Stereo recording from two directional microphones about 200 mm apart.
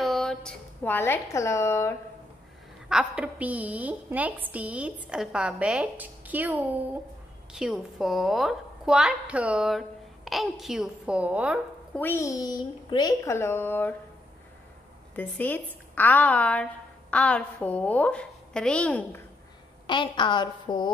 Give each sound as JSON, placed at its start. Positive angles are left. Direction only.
{"t": 0.0, "sound": "a woman's voice", "side_deg": 0}
{"t": 2.9, "sound": "a woman's voice", "side_deg": -5}
{"t": 11.9, "sound": "a woman's voice", "side_deg": 10}
{"t": 15.1, "sound": "a woman's voice", "side_deg": 10}
{"t": 19.9, "sound": "a woman's voice", "side_deg": 25}